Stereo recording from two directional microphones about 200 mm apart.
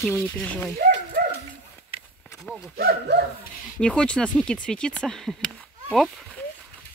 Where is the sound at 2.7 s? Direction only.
55° right (ahead or behind).